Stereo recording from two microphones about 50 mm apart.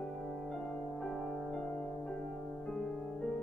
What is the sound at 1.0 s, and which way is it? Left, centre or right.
Music, centre.